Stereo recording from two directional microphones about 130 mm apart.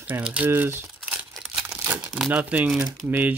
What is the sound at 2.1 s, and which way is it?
Speech, 10° right (ahead or behind).